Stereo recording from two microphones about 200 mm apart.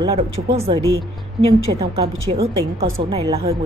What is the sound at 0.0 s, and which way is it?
A woman's voice, 25° right (ahead or behind).